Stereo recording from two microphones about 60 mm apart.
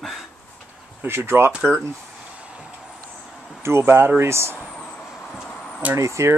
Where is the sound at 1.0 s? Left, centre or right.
Right.